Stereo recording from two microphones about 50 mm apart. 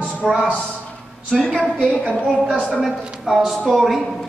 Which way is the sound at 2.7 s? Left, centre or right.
Centre.